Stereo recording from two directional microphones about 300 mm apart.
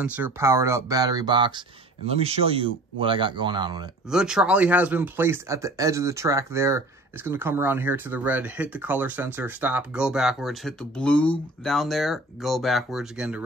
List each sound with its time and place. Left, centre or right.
0.0 s speech: centre
4.1 s speech: centre